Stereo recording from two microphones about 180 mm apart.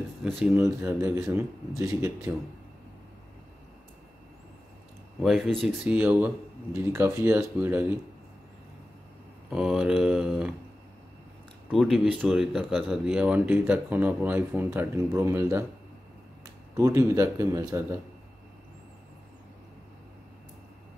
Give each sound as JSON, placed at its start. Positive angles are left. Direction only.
{"t": 0.4, "sound": "speech", "side_deg": -10}
{"t": 5.2, "sound": "speech", "side_deg": 0}
{"t": 5.9, "sound": "speech", "side_deg": -10}
{"t": 9.5, "sound": "speech", "side_deg": -5}
{"t": 11.7, "sound": "speech", "side_deg": 0}
{"t": 16.7, "sound": "speech", "side_deg": -15}